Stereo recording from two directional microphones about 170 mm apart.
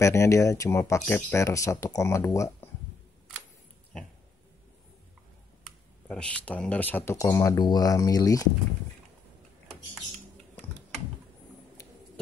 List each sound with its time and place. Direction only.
0.0 s speech: 15° left (ahead or behind)
6.0 s speech: 5° left (ahead or behind); by 8.5 s 20° left (ahead or behind)